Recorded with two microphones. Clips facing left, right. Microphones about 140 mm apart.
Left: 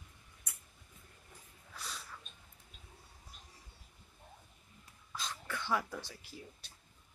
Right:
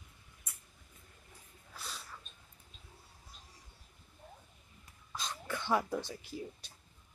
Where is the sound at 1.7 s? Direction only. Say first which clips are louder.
Even; centre (ahead or behind).